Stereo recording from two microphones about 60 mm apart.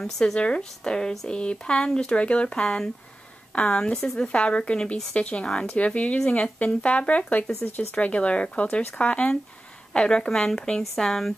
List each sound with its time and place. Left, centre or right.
0.0 s speech: centre
4.2 s speech: centre